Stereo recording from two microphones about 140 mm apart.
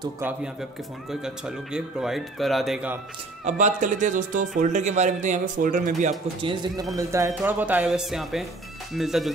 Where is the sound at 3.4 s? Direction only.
65° right (ahead or behind).